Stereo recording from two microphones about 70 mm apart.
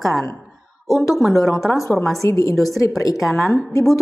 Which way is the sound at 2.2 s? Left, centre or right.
Left.